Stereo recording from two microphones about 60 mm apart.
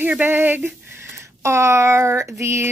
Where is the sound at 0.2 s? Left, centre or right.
Right.